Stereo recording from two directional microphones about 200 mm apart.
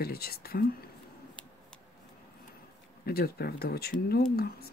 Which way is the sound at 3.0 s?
50° left (ahead or behind).